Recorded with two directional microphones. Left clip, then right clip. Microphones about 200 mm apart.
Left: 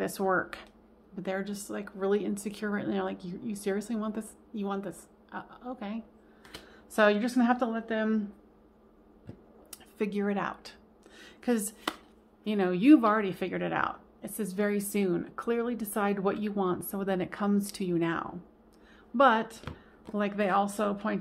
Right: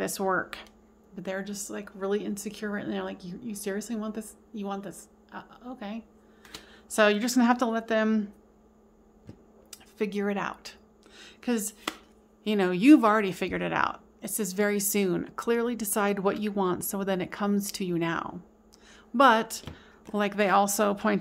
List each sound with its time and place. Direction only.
0.0 s a woman's voice: 10° right (ahead or behind); by 8.3 s 30° right (ahead or behind)
9.7 s a sound: 10° right (ahead or behind)
12.4 s speech: 20° right (ahead or behind)